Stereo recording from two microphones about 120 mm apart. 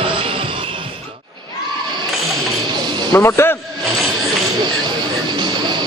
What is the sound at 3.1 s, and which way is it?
Speech, 25° left (ahead or behind).